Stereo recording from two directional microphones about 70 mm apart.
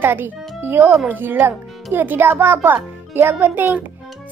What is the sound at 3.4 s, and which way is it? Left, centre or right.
Speech, right.